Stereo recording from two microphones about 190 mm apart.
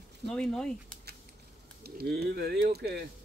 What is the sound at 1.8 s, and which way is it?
Speech, 55° right (ahead or behind).